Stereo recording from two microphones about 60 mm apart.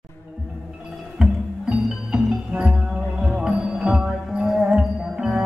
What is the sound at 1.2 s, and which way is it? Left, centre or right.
Music, centre.